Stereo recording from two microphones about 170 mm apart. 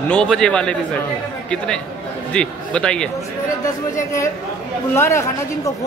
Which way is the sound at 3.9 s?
15° left (ahead or behind).